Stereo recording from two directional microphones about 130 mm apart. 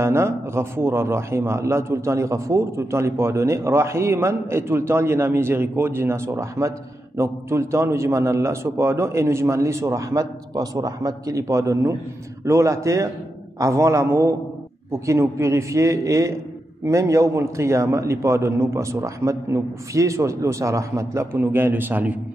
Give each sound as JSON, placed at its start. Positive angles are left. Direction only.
{"t": 0.0, "sound": "a man's voice", "side_deg": -20}